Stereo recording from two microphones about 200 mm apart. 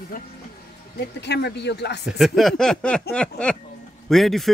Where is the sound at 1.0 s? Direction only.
55° left (ahead or behind).